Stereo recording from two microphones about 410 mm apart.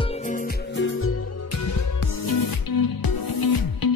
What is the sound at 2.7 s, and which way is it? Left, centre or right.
Music, left.